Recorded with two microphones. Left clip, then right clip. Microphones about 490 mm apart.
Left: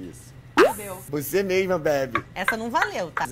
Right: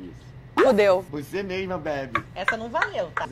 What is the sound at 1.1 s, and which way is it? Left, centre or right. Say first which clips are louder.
Speech: left 7 dB; left.